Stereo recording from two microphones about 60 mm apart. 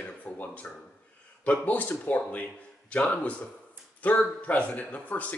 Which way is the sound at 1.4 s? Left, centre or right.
Left.